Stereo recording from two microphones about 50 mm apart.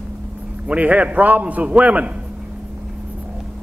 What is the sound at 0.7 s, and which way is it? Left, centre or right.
A man's voice, right.